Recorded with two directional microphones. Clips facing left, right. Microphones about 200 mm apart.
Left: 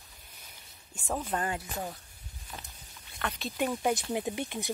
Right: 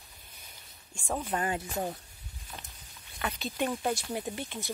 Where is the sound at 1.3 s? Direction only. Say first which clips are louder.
Right 2 dB; 20° right (ahead or behind).